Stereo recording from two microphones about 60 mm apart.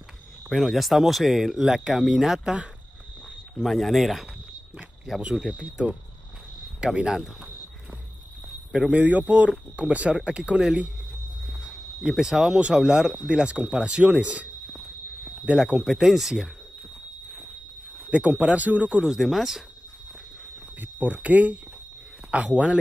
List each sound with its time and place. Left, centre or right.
0.7 s speech: centre
3.5 s speech: centre
5.5 s speech: centre
8.9 s speech: right; by 10.9 s centre
12.0 s speech: centre; by 15.6 s right
15.8 s speech: centre
18.1 s speech: right
19.0 s speech: centre
20.8 s speech: right